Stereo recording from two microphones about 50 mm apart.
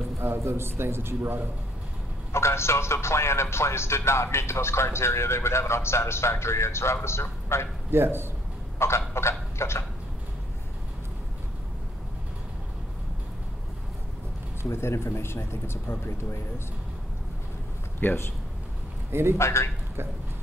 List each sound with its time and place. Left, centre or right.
0.4 s a man's voice: right
2.3 s a man's voice: left
7.9 s a man's voice: right
8.7 s a sound: left
14.7 s a man's voice: left
18.0 s speech: left
19.3 s a man's voice: left